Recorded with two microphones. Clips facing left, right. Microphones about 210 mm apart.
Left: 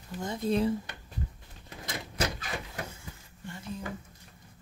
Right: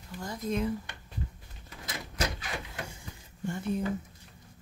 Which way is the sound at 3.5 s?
60° right (ahead or behind).